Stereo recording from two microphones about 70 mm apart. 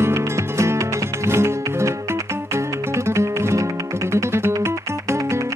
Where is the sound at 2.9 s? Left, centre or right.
Right.